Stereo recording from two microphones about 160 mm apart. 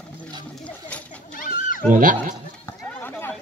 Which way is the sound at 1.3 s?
60° left (ahead or behind).